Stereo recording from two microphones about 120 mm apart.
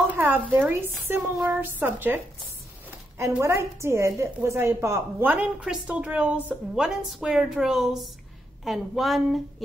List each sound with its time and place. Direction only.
0.1 s a woman's voice: 15° right (ahead or behind)